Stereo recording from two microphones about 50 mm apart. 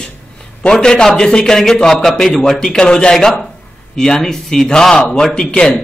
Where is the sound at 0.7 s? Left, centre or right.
Centre.